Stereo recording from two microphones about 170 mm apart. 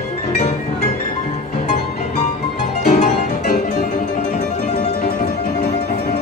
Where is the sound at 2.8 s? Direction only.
45° left (ahead or behind).